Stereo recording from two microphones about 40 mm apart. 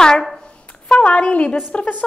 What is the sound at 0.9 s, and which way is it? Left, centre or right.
A woman's voice, left.